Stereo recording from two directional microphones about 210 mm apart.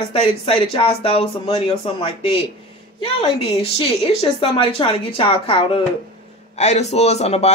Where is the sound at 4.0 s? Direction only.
25° left (ahead or behind).